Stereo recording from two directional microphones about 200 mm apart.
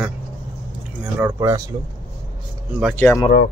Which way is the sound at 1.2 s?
15° right (ahead or behind).